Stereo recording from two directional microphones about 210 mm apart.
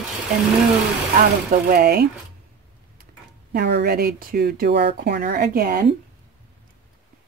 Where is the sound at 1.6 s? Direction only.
45° right (ahead or behind).